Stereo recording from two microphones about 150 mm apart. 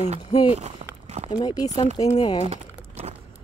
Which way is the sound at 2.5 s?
45° right (ahead or behind).